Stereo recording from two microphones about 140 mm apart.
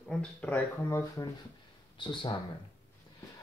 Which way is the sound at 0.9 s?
25° left (ahead or behind).